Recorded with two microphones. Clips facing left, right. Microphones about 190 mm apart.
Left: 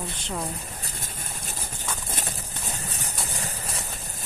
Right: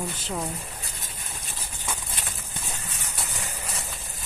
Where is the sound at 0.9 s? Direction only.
45° left (ahead or behind).